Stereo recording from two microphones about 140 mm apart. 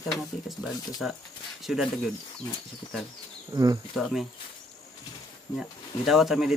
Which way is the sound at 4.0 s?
Centre (ahead or behind).